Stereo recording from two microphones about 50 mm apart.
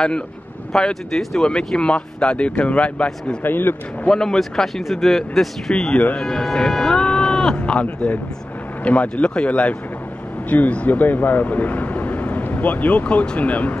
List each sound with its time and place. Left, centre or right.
0.7 s speech: centre
3.4 s a man's voice: left
4.1 s speech: centre
5.9 s speech: left
6.2 s speech: centre; by 13.7 s left